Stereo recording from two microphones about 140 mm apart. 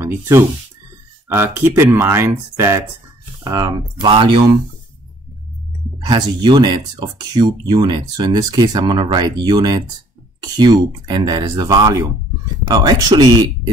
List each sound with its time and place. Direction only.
0.0 s speech: 20° right (ahead or behind)
3.4 s speech: 30° right (ahead or behind)
6.0 s speech: 30° right (ahead or behind)